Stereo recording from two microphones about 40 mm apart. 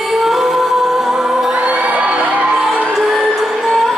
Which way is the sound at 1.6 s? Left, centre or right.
Right.